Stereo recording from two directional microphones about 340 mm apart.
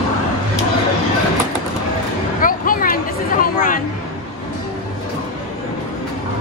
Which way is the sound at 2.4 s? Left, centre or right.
Left.